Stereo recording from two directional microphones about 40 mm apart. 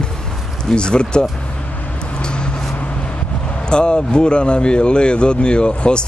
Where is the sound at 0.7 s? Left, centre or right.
Left.